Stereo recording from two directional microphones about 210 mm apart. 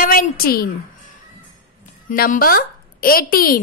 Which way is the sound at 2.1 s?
40° left (ahead or behind).